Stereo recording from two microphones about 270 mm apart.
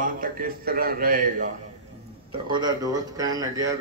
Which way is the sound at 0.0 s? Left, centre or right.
Right.